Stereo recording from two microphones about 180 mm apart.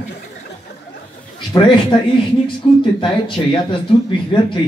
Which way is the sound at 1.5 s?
25° left (ahead or behind).